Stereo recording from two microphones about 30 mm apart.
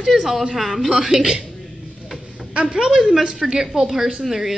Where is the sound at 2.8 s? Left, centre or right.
Right.